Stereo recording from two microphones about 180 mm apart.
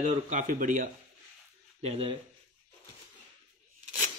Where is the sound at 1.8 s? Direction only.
35° right (ahead or behind).